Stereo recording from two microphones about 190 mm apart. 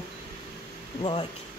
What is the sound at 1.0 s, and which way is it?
Speech, 25° left (ahead or behind).